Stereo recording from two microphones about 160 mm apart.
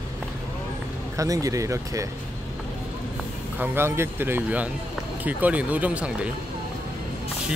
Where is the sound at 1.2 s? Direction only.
20° right (ahead or behind).